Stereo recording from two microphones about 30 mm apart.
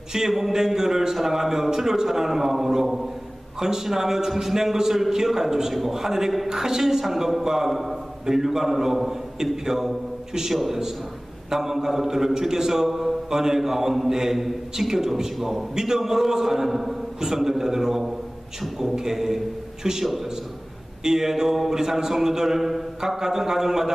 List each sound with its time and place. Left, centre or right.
0.1 s a sound: centre
0.7 s a man's voice: centre
10.5 s a man's voice: centre
11.5 s a man's voice: centre